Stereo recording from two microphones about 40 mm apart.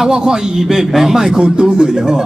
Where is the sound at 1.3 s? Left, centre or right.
Centre.